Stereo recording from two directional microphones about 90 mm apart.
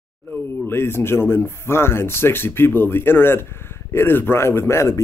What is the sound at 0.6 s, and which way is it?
Speech, 25° left (ahead or behind).